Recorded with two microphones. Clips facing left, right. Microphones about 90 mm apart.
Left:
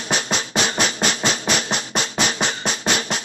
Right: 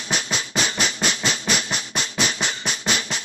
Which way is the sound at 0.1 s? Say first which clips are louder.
Left 3 dB; 45° left (ahead or behind).